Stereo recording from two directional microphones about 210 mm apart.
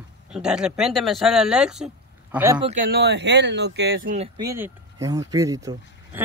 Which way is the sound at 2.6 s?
30° right (ahead or behind).